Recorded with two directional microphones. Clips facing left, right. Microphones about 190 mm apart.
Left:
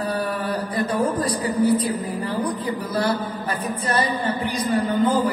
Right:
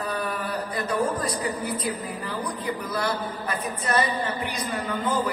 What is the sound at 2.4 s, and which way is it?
Music, 30° left (ahead or behind).